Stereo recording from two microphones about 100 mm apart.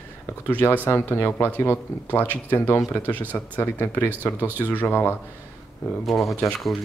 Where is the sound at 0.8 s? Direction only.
30° left (ahead or behind).